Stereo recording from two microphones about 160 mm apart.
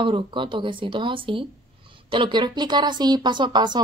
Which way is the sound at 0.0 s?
30° right (ahead or behind).